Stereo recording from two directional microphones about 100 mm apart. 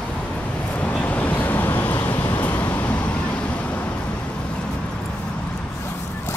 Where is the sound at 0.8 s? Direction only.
15° left (ahead or behind).